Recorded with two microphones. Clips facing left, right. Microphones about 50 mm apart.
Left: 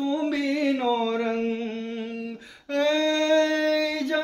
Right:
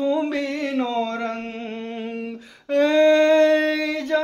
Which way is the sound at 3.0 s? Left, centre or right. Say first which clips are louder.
Right 9 dB; right.